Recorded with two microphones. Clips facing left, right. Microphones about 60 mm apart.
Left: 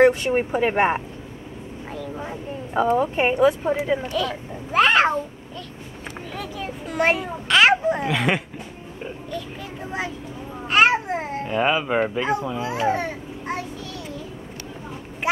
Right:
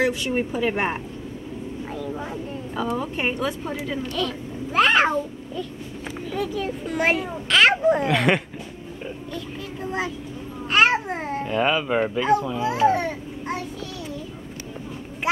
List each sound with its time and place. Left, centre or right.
0.3 s speech: left
2.0 s a child's voice: centre
2.7 s speech: left
3.3 s speech: left
4.1 s a child's voice: centre
6.5 s a child's voice: centre
9.8 s a child's voice: centre